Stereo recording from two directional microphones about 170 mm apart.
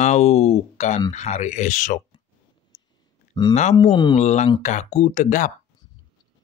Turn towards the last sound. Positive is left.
turn(degrees=50)  # may be behind; listen again after turning